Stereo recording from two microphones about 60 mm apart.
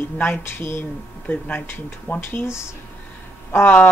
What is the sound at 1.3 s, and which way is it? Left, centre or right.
Speech, left.